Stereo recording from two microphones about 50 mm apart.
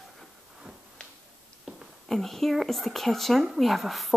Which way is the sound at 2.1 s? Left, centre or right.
Centre.